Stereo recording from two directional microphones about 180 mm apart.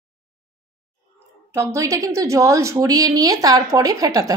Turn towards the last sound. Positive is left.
turn(degrees=-20)  # may be behind; listen again after turning